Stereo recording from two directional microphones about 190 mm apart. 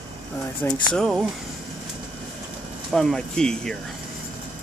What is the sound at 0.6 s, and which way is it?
Speech, 25° left (ahead or behind).